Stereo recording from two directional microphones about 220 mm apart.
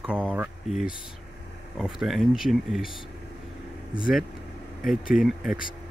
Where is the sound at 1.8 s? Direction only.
Centre (ahead or behind).